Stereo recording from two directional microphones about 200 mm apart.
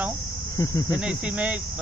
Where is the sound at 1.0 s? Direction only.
5° right (ahead or behind).